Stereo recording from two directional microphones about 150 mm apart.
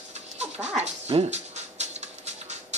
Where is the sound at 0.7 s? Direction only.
45° right (ahead or behind).